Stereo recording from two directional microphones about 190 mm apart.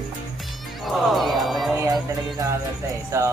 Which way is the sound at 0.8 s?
Centre (ahead or behind).